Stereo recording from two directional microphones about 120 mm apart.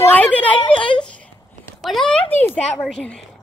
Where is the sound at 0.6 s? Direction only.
45° left (ahead or behind).